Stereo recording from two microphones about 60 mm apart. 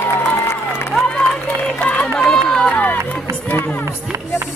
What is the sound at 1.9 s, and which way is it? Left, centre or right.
Run, centre.